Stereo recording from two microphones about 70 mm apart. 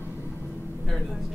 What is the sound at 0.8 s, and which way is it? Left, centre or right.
Vehicle, centre.